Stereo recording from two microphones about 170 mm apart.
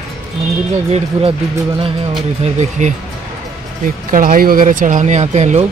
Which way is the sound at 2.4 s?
45° right (ahead or behind).